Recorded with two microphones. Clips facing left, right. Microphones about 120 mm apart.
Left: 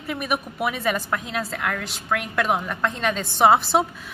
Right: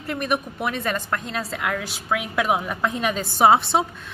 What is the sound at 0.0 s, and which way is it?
A woman's voice, 5° left (ahead or behind).